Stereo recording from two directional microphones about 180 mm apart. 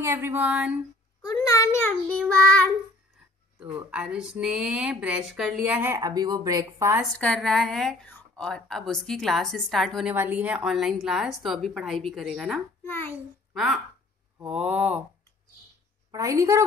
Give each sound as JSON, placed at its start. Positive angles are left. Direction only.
{"t": 0.0, "sound": "speech", "side_deg": -15}
{"t": 1.2, "sound": "child singing", "side_deg": 20}
{"t": 3.9, "sound": "speech", "side_deg": -5}
{"t": 7.0, "sound": "a woman's voice", "side_deg": 5}
{"t": 10.1, "sound": "a woman's voice", "side_deg": -10}
{"t": 12.8, "sound": "child singing", "side_deg": 15}
{"t": 13.5, "sound": "a sound", "side_deg": 0}
{"t": 14.4, "sound": "speech", "side_deg": -5}
{"t": 16.1, "sound": "a woman's voice", "side_deg": -20}